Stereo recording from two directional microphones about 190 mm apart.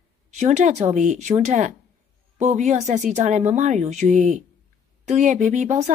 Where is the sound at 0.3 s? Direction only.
40° right (ahead or behind).